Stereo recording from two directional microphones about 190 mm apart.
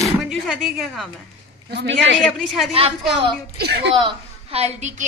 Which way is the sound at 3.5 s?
55° right (ahead or behind).